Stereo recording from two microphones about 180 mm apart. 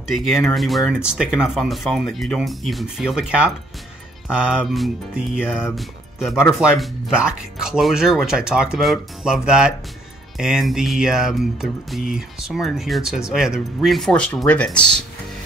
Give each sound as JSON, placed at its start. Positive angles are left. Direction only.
{"t": 0.1, "sound": "music", "side_deg": 0}
{"t": 5.8, "sound": "speech", "side_deg": 0}
{"t": 6.8, "sound": "music", "side_deg": -5}